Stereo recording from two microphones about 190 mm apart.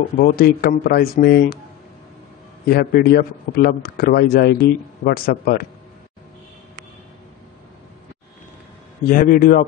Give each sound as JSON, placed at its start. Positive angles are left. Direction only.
{"t": 0.2, "sound": "speech", "side_deg": 50}
{"t": 2.6, "sound": "speech", "side_deg": 55}
{"t": 9.1, "sound": "speech", "side_deg": 50}